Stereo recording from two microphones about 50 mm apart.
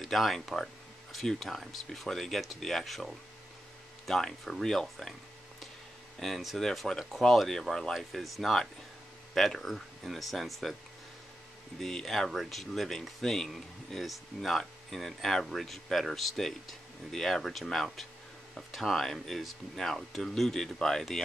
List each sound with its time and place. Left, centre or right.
0.0 s speech: centre
6.1 s speech: centre
11.8 s speech: centre